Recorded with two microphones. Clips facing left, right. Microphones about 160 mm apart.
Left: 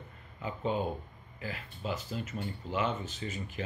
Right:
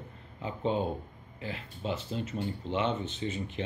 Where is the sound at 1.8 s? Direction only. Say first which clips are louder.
Right 2 dB; 30° right (ahead or behind).